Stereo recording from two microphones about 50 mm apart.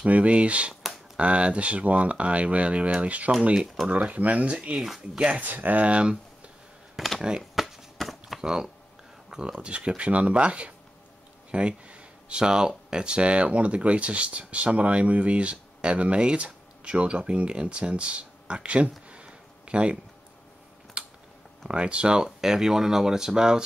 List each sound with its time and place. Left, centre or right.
0.0 s speech: right
4.7 s speech: centre
5.4 s speech: right; by 7.4 s centre
7.5 s a sound: centre
8.4 s speech: centre
21.0 s typing: right
21.6 s speech: right